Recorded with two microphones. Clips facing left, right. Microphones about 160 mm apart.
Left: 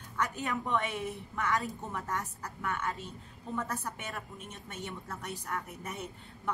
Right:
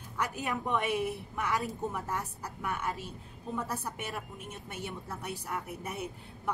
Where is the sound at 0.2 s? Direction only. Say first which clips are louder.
Even; 15° right (ahead or behind).